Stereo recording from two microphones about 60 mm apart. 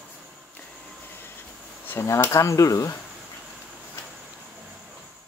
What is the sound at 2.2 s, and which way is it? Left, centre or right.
Speech, left.